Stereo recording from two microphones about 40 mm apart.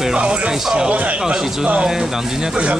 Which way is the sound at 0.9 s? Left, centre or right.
Right.